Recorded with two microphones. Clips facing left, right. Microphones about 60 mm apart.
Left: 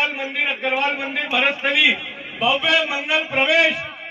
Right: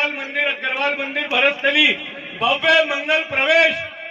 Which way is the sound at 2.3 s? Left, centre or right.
Right.